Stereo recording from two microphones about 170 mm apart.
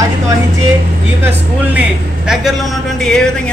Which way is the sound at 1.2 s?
10° right (ahead or behind).